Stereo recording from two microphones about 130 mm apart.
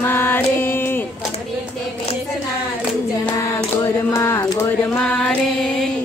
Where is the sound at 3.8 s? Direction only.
20° left (ahead or behind).